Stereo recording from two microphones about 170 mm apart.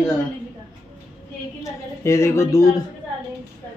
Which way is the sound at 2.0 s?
15° left (ahead or behind).